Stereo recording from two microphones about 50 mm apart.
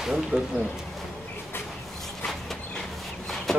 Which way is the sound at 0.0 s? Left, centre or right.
Centre.